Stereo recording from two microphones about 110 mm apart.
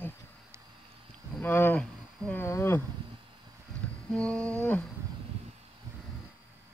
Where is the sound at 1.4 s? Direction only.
20° left (ahead or behind).